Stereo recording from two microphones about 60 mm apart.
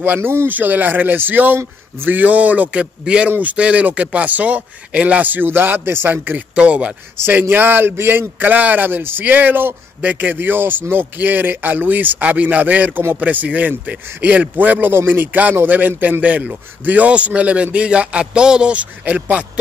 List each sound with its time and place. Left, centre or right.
0.0 s speech: right
0.5 s a man's voice: right
6.5 s a man's voice: right
7.2 s a man's voice: right